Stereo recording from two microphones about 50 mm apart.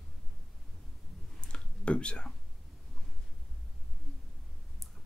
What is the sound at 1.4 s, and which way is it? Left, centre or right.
Whispering, left.